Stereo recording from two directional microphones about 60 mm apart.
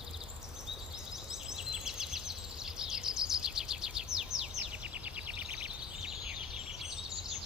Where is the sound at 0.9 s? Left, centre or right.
Centre.